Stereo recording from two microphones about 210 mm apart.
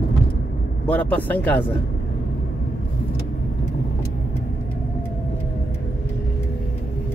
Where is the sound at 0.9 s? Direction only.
10° left (ahead or behind).